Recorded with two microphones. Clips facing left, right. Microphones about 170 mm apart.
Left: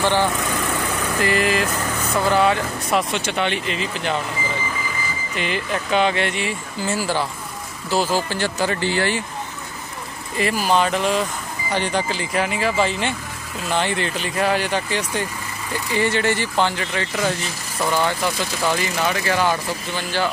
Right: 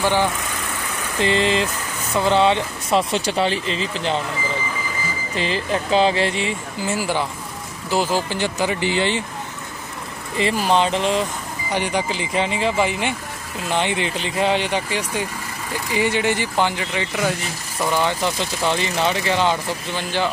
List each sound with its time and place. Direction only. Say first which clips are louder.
1.2 s speech: right 2 dB; 25° right (ahead or behind)
5.3 s speech: right 2 dB; 30° right (ahead or behind)
6.9 s speech: even; 15° right (ahead or behind)
10.4 s speech: right 1 dB; 25° right (ahead or behind)